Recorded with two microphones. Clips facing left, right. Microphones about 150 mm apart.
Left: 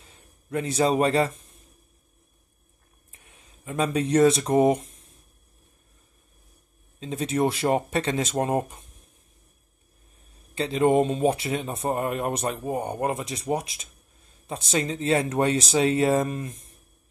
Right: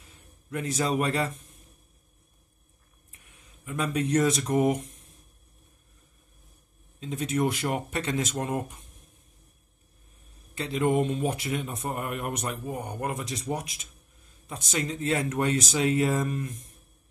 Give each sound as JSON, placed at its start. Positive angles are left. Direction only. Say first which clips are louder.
{"t": 0.5, "sound": "speech", "louder": "left 5 dB", "side_deg": 30}
{"t": 3.6, "sound": "speech", "louder": "left 3 dB", "side_deg": 30}
{"t": 7.0, "sound": "speech", "louder": "left 3 dB", "side_deg": 30}
{"t": 10.5, "sound": "speech", "louder": "left 5 dB", "side_deg": 30}